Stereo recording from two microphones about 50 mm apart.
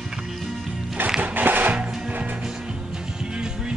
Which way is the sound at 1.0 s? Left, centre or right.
Right.